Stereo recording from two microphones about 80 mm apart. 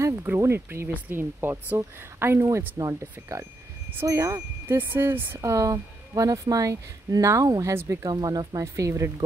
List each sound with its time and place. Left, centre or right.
0.0 s a sound: right
0.4 s a woman's voice: right
5.4 s speech: right